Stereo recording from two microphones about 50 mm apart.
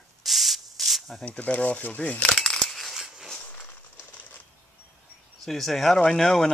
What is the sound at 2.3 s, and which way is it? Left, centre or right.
Coin, centre.